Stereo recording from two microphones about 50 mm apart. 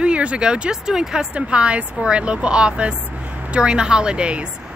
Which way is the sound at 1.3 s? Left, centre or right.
Right.